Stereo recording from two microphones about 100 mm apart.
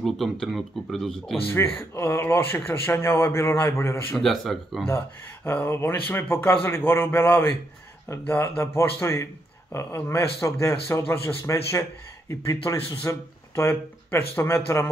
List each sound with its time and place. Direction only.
0.0 s speech: centre (ahead or behind)
1.5 s a man's voice: 25° left (ahead or behind)
4.2 s speech: centre (ahead or behind)
4.8 s a man's voice: 25° left (ahead or behind)